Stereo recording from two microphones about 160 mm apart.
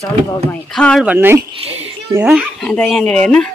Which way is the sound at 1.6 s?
40° right (ahead or behind).